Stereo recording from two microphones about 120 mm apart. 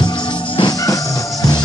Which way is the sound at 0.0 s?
40° left (ahead or behind).